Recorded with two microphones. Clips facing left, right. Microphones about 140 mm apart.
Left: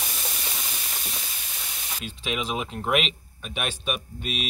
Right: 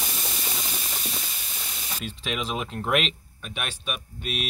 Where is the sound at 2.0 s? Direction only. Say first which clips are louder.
Left 1 dB; centre (ahead or behind).